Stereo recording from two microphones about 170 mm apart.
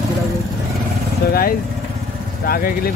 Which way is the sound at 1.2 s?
65° left (ahead or behind).